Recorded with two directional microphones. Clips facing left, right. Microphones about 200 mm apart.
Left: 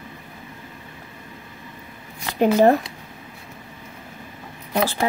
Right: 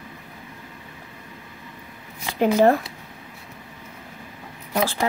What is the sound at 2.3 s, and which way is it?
Speech, 15° left (ahead or behind).